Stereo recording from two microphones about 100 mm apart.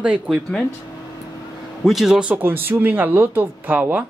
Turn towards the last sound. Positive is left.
turn(degrees=-15)  # may be behind; listen again after turning